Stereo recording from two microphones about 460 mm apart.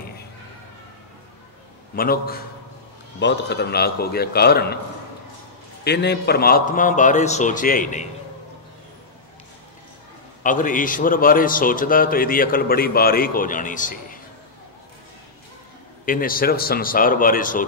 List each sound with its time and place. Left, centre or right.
2.0 s a man's voice: centre
5.9 s a man's voice: left
10.4 s a man's voice: centre
16.1 s a man's voice: centre